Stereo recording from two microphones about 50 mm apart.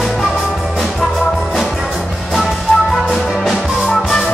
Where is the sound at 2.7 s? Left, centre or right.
Left.